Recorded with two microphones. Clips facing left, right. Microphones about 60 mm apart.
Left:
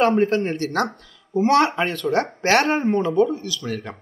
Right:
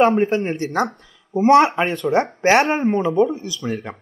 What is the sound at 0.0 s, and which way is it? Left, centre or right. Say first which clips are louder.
Speech: right 2 dB; centre.